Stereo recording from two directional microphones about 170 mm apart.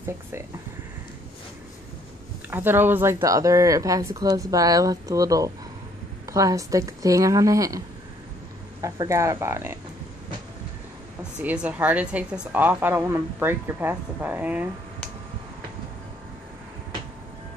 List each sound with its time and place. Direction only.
2.5 s speech: 10° right (ahead or behind)
8.8 s a woman's voice: 20° right (ahead or behind)
11.4 s a woman's voice: 10° right (ahead or behind)